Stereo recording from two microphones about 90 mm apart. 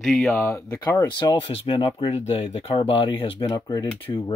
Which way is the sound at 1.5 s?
75° left (ahead or behind).